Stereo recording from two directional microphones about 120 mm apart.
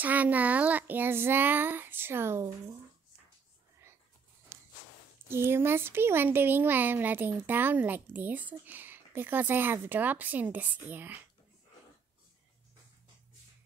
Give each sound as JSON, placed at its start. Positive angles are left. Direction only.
{"t": 0.0, "sound": "speech", "side_deg": -15}
{"t": 5.3, "sound": "speech", "side_deg": -20}